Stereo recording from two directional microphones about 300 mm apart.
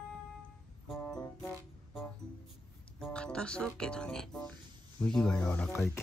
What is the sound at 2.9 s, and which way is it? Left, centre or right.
Speech, centre.